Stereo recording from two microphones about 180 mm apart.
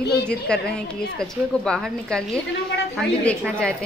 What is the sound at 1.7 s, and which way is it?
Speech, 5° left (ahead or behind).